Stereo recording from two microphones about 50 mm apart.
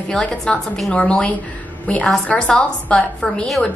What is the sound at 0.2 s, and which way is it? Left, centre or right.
A woman's voice, left.